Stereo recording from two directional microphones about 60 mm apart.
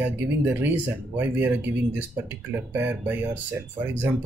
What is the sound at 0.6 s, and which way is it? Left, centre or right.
Speech, right.